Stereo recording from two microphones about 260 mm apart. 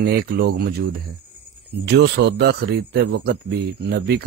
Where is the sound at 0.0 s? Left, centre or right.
Right.